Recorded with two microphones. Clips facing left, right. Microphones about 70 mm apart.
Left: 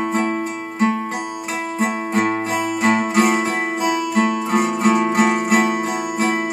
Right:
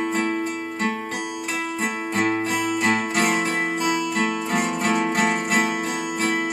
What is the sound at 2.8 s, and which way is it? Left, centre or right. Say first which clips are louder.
Music: left 7 dB; centre.